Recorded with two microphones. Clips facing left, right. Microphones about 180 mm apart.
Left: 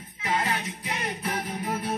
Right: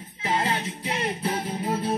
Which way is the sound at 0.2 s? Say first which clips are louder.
Right 2 dB; 25° right (ahead or behind).